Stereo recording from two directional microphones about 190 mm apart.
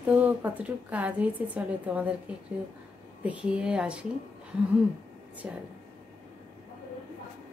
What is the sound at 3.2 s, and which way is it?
Speech, 5° right (ahead or behind).